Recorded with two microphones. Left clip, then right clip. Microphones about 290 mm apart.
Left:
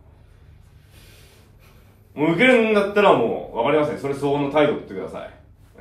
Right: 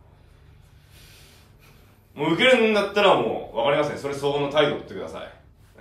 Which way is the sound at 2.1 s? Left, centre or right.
Centre.